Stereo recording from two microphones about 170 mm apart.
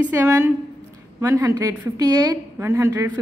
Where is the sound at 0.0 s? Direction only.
15° right (ahead or behind).